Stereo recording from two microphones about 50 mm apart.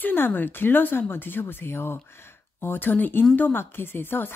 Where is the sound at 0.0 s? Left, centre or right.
Left.